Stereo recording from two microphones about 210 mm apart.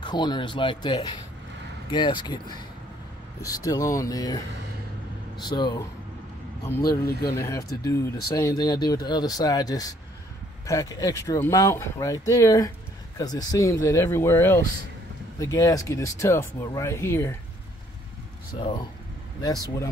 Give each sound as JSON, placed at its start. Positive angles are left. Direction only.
{"t": 0.0, "sound": "speech", "side_deg": 20}
{"t": 5.4, "sound": "speech", "side_deg": 20}